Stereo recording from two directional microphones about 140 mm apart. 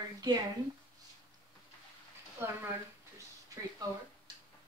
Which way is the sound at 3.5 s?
25° right (ahead or behind).